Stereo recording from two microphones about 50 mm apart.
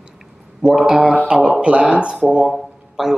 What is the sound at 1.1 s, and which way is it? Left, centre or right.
Speech, right.